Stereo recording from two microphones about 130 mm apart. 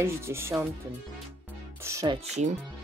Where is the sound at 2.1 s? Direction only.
55° right (ahead or behind).